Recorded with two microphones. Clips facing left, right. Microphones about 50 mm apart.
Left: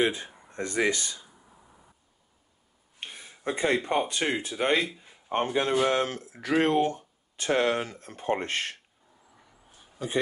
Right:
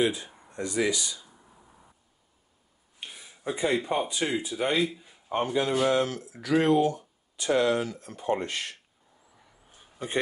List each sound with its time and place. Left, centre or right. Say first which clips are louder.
0.0 s speech: even; left
3.0 s a sound: left 1 dB; left
4.1 s speech: even; left
5.3 s speech: left 1 dB; left